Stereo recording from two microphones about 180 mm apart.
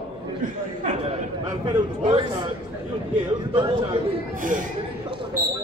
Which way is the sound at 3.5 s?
25° right (ahead or behind).